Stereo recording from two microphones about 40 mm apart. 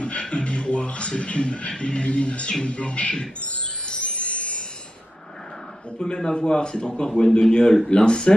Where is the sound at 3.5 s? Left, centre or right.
Left.